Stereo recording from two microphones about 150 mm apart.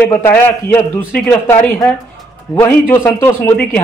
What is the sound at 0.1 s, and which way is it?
A man's voice, 15° left (ahead or behind).